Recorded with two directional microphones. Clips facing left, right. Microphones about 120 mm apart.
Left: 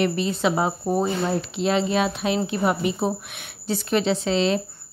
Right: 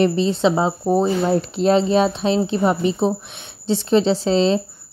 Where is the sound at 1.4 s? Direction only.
40° right (ahead or behind).